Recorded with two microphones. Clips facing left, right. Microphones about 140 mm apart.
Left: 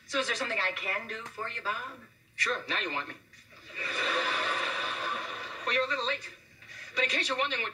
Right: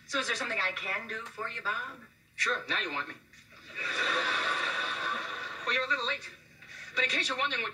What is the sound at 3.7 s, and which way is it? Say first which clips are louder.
Neigh: left 1 dB; centre (ahead or behind).